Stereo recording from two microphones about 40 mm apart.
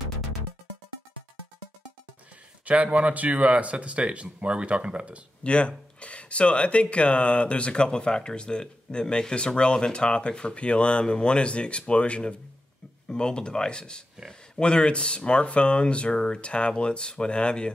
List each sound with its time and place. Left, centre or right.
2.6 s speech: right
5.4 s speech: left